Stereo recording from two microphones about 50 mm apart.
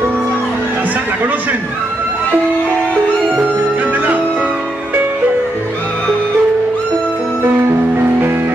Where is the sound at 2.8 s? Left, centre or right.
Left.